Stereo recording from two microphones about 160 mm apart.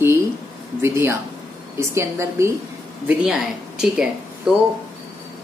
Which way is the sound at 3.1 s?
5° right (ahead or behind).